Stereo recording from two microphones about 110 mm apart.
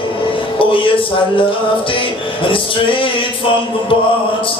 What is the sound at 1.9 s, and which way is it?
Music, 50° left (ahead or behind).